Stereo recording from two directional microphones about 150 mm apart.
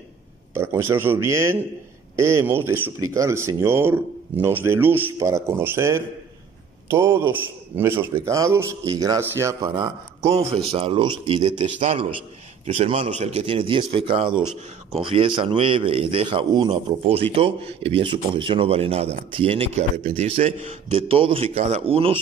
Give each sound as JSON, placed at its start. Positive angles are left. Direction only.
{"t": 0.6, "sound": "speech", "side_deg": -15}
{"t": 10.3, "sound": "a man's voice", "side_deg": -40}